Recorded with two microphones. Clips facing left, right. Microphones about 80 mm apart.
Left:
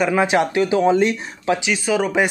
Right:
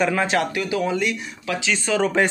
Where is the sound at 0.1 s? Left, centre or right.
Centre; by 1.6 s left.